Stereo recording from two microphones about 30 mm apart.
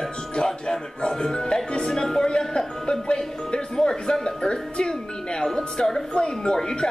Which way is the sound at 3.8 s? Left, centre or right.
Left.